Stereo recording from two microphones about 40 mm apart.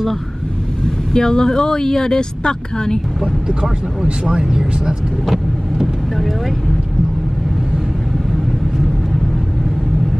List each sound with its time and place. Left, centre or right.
1.1 s speech: centre